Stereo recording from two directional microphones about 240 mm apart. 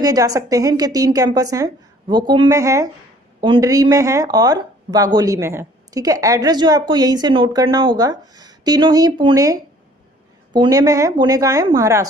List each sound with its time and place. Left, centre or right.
0.0 s speech: centre